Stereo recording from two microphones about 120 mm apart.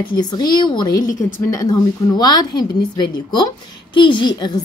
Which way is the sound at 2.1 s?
35° left (ahead or behind).